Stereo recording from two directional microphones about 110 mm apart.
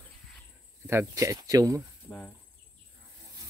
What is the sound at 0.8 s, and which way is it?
Speech, 25° right (ahead or behind).